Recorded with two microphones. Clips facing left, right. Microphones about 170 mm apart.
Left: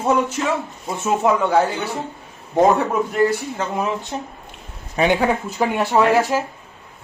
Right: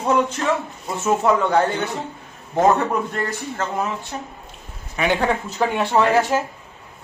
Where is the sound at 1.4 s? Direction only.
10° left (ahead or behind).